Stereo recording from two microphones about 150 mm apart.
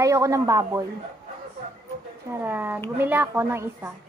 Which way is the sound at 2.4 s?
15° right (ahead or behind).